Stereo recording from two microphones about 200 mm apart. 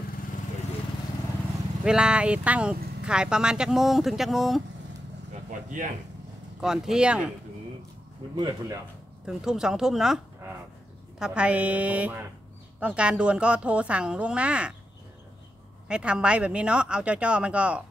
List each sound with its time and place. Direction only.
1.9 s speech: 5° right (ahead or behind)
5.5 s speech: 40° right (ahead or behind)
6.6 s speech: centre (ahead or behind)
8.4 s speech: 20° right (ahead or behind)
9.2 s a woman's voice: 5° right (ahead or behind)
15.9 s speech: 5° right (ahead or behind)